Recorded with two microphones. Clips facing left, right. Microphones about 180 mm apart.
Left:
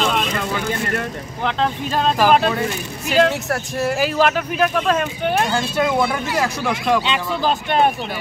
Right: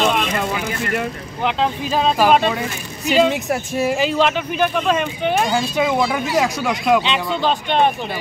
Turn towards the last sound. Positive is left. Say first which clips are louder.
# even
turn(degrees=5)  # may be behind; listen again after turning